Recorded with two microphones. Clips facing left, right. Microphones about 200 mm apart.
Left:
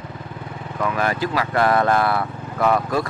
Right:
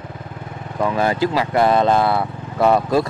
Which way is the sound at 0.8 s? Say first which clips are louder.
Right 4 dB; 30° right (ahead or behind).